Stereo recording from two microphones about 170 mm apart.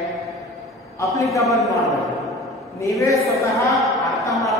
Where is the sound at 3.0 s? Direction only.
20° left (ahead or behind).